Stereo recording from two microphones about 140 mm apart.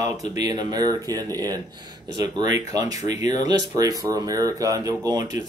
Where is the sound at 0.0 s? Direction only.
25° right (ahead or behind).